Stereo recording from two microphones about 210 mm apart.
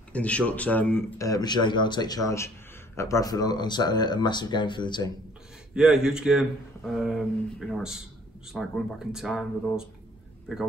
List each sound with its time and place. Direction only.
0.1 s speech: 5° left (ahead or behind); by 5.1 s 20° left (ahead or behind)
5.8 s speech: 5° right (ahead or behind)